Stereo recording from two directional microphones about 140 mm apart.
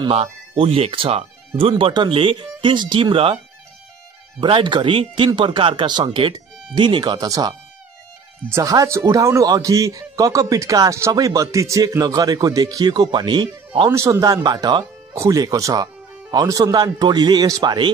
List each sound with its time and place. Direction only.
0.0 s speech: 45° right (ahead or behind)
4.4 s speech: 35° right (ahead or behind)
13.8 s speech: 20° right (ahead or behind)